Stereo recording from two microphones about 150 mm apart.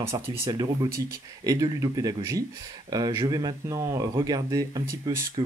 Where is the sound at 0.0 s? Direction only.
20° right (ahead or behind).